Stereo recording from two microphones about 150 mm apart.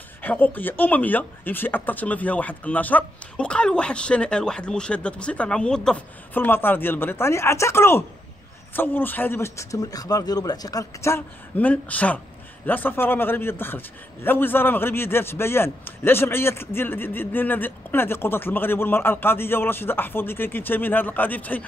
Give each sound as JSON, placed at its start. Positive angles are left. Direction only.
{"t": 0.2, "sound": "a man's voice", "side_deg": 10}